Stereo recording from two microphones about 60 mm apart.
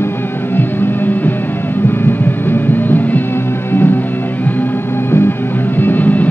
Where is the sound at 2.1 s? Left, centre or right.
Left.